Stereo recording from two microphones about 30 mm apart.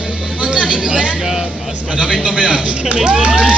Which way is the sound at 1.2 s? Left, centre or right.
Centre.